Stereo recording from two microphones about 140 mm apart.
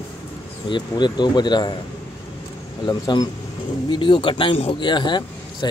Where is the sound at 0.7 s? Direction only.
30° left (ahead or behind).